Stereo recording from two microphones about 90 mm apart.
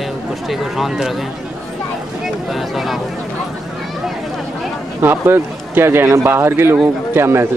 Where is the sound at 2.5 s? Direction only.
Centre (ahead or behind).